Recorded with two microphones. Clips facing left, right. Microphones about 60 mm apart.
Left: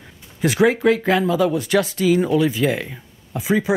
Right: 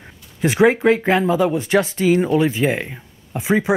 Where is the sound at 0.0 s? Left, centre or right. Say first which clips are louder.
Right 1 dB; right.